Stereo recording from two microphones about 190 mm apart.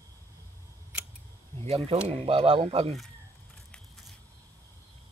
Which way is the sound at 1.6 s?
30° right (ahead or behind).